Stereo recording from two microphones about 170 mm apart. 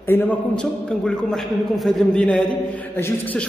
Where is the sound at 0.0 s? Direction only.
10° left (ahead or behind).